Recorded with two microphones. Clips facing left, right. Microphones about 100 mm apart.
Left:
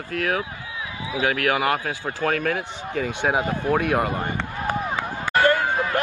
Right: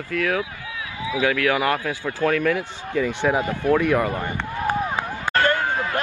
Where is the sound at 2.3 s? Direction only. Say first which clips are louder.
Right 2 dB; 50° left (ahead or behind).